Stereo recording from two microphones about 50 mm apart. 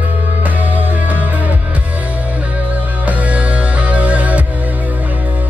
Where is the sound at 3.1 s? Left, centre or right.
Right.